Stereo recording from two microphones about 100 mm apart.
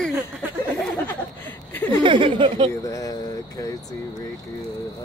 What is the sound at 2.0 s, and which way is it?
Speech, 55° right (ahead or behind).